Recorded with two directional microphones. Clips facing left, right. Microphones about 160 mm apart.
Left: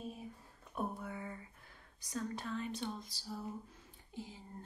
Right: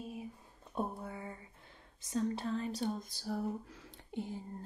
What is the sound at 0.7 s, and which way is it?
Speech, 30° right (ahead or behind).